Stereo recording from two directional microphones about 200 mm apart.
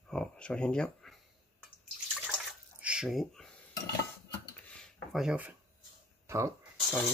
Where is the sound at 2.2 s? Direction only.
5° right (ahead or behind).